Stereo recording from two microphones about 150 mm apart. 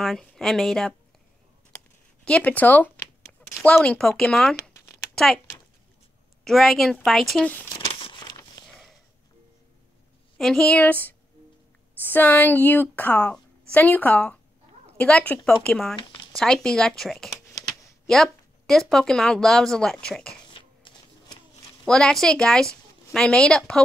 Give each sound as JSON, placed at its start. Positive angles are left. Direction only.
{"t": 0.0, "sound": "a woman's voice", "side_deg": 5}
{"t": 2.2, "sound": "speech", "side_deg": 10}
{"t": 4.6, "sound": "a sound", "side_deg": 20}
{"t": 5.1, "sound": "speech", "side_deg": 5}
{"t": 6.4, "sound": "speech", "side_deg": 0}
{"t": 7.9, "sound": "crumpling", "side_deg": 40}
{"t": 8.2, "sound": "a sound", "side_deg": 25}
{"t": 10.3, "sound": "a woman's voice", "side_deg": 5}
{"t": 20.5, "sound": "shuffling cards", "side_deg": 35}
{"t": 21.8, "sound": "speech", "side_deg": 5}